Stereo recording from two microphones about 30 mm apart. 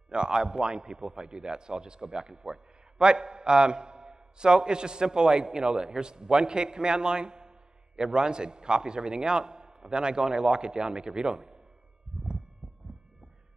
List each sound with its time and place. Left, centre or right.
0.1 s a man's voice: right